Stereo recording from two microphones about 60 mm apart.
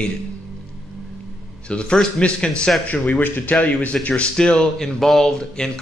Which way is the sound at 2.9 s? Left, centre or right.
Left.